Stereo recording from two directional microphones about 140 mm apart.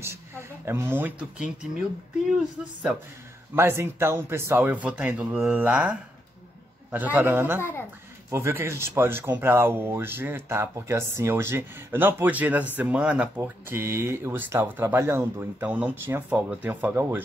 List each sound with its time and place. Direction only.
0.7 s speech: 15° right (ahead or behind)
3.5 s speech: 15° right (ahead or behind)